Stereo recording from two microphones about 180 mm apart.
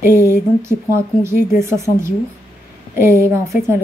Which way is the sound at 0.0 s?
15° right (ahead or behind).